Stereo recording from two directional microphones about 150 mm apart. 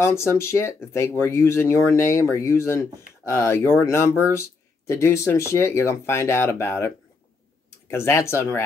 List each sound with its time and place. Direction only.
0.0 s speech: 15° left (ahead or behind)
7.9 s speech: 15° left (ahead or behind)